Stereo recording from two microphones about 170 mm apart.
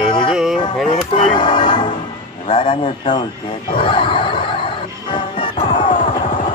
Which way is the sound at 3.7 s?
30° left (ahead or behind).